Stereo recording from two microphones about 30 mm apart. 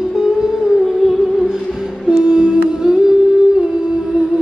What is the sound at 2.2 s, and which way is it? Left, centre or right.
Music, right.